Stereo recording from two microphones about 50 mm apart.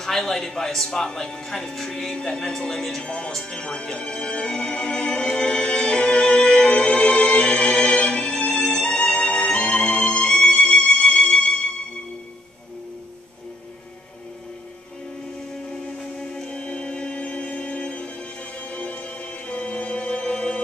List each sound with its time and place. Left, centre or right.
0.0 s speech: centre
3.3 s music: centre
16.0 s music: centre
16.4 s music: left